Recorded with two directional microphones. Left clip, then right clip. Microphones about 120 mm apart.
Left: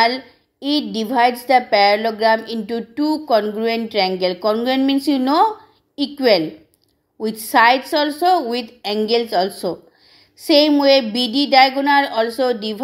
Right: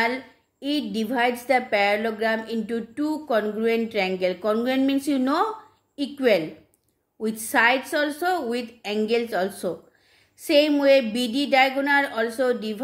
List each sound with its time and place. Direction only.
0.0 s a woman's voice: 25° left (ahead or behind)